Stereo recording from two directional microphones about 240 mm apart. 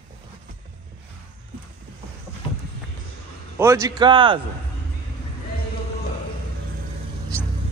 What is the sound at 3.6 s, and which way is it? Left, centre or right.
Speech, centre.